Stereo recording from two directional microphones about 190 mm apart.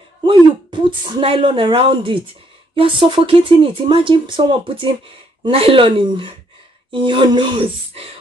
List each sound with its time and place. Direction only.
0.2 s speech: 25° right (ahead or behind)